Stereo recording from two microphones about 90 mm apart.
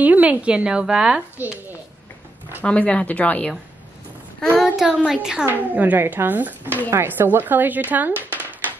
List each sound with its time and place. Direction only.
0.0 s a woman's voice: 20° right (ahead or behind)
1.4 s a child's voice: 20° right (ahead or behind)
2.6 s speech: 15° left (ahead or behind)
4.7 s a woman's voice: 5° right (ahead or behind)
5.5 s a child's voice: 20° right (ahead or behind)